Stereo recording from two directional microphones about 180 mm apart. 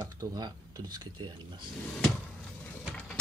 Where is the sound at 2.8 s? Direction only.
5° left (ahead or behind).